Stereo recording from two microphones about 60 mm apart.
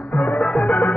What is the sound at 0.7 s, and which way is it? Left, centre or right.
Music, left.